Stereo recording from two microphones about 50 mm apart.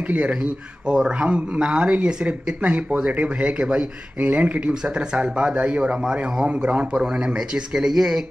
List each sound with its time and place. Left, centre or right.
0.0 s speech: right; by 8.2 s centre